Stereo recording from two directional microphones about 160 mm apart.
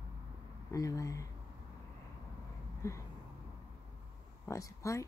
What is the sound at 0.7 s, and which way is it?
Speech, 20° left (ahead or behind).